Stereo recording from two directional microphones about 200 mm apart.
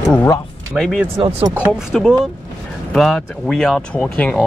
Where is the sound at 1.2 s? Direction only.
25° right (ahead or behind).